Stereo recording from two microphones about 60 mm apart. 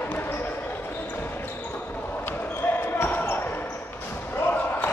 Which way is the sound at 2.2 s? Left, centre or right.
Left.